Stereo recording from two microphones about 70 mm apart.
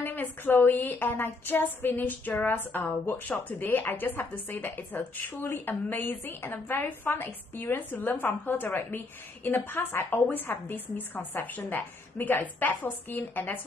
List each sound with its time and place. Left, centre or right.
0.0 s a woman's voice: left